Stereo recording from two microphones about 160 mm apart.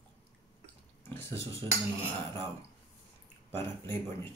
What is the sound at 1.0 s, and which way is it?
Speech, 15° left (ahead or behind).